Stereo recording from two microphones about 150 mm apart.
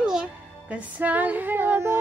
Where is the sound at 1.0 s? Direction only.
10° right (ahead or behind).